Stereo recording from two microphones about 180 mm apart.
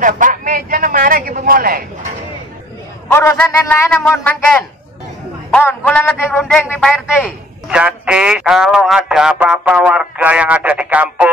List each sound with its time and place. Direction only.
0.0 s a man's voice: 45° right (ahead or behind)
3.1 s a man's voice: 10° left (ahead or behind)
7.7 s speech: 5° right (ahead or behind)